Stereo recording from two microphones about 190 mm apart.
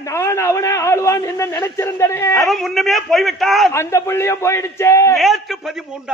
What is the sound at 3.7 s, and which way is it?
A man's voice, 15° left (ahead or behind).